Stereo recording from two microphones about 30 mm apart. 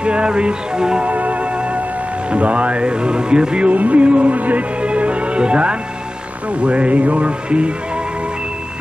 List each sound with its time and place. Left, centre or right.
0.0 s speech: right
1.0 s music: right
2.3 s speech: right
3.7 s music: right
6.6 s music: right